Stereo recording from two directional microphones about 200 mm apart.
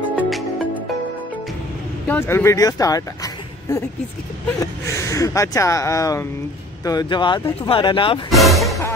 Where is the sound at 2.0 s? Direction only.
10° left (ahead or behind).